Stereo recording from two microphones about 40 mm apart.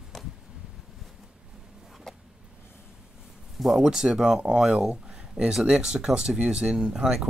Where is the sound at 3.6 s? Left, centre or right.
Centre.